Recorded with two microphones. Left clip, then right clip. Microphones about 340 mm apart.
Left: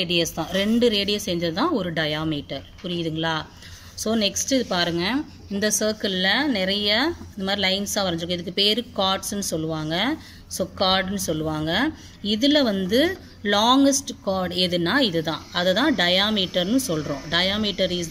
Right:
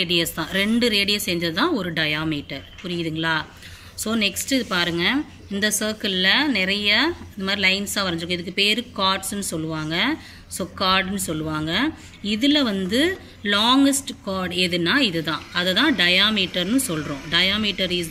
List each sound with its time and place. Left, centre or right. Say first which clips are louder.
0.0 s a woman's voice: right 1 dB; left